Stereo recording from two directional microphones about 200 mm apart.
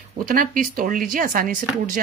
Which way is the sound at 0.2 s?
45° right (ahead or behind).